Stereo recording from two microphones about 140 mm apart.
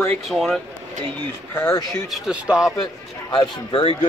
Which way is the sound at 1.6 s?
20° left (ahead or behind).